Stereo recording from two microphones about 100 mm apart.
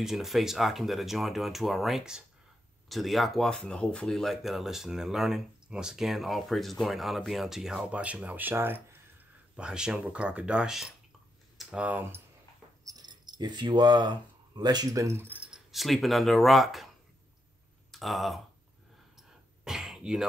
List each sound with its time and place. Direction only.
0.0 s speech: 5° right (ahead or behind); by 9.0 s 20° right (ahead or behind)
9.6 s speech: 5° right (ahead or behind)
13.0 s speech: 45° right (ahead or behind)
15.2 s keys jangling: 15° right (ahead or behind)
15.7 s speech: centre (ahead or behind)
17.9 s speech: centre (ahead or behind)
19.1 s throat clearing: 5° right (ahead or behind)